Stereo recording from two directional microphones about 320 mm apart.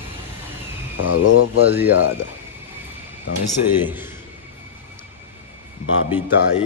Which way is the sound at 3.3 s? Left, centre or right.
Left.